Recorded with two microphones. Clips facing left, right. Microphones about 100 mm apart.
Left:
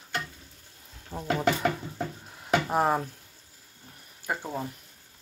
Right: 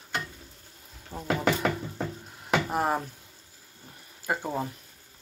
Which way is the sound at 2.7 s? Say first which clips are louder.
Left 4 dB; centre (ahead or behind).